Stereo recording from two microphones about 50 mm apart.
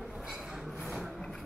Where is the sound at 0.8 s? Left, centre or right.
Centre.